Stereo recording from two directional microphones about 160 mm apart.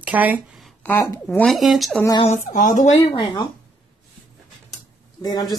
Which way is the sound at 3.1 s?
25° left (ahead or behind).